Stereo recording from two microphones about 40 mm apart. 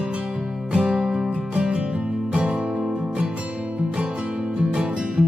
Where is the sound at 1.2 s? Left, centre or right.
Right.